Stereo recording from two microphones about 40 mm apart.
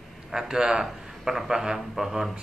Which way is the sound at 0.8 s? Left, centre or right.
Centre.